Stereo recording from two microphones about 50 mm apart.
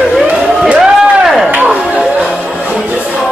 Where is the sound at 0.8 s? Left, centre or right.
Centre.